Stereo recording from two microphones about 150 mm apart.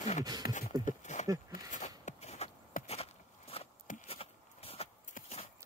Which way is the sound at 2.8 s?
45° left (ahead or behind).